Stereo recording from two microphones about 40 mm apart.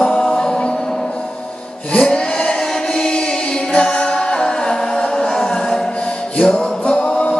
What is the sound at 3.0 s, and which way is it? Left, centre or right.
Chant, left.